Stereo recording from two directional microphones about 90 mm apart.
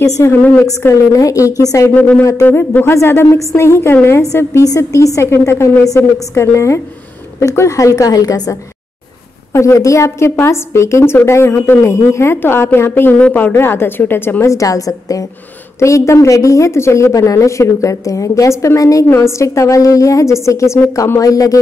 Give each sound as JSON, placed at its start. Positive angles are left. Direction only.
{"t": 0.0, "sound": "a woman's voice", "side_deg": 30}
{"t": 2.0, "sound": "a woman's voice", "side_deg": 15}